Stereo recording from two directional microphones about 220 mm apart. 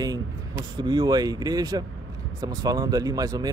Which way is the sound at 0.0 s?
15° right (ahead or behind).